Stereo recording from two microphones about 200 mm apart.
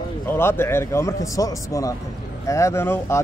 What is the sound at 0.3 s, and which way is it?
Speech, 10° left (ahead or behind).